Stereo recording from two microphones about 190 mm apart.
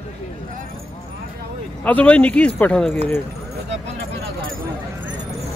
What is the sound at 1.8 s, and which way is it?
Speech, 5° left (ahead or behind).